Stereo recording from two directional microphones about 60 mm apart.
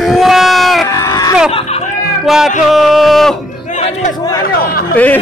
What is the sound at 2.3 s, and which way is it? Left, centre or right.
Speech, centre.